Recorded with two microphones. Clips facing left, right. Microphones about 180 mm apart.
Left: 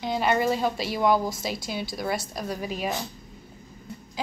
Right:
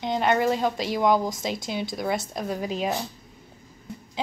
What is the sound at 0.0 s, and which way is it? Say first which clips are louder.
Speech: right 1 dB; 5° left (ahead or behind).